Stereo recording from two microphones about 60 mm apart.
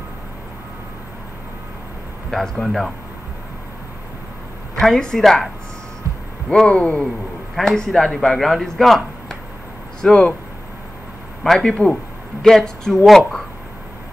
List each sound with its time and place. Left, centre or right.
2.3 s speech: centre
4.8 s a woman's voice: centre
6.5 s speech: centre
7.5 s speech: centre
10.0 s speech: centre
11.4 s speech: centre